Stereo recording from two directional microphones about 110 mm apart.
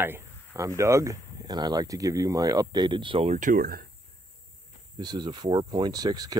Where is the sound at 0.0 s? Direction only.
20° right (ahead or behind); by 3.3 s 50° right (ahead or behind).